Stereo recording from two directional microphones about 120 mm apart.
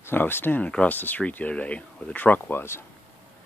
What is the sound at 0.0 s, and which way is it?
Speech, 20° left (ahead or behind).